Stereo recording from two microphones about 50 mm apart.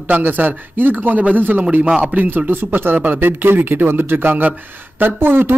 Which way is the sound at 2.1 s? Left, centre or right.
Right.